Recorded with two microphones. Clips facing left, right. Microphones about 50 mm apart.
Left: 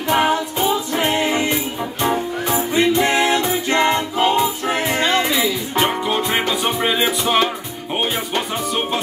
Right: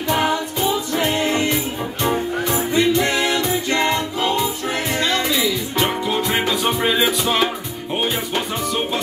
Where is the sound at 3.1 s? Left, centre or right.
Left; by 7.1 s centre.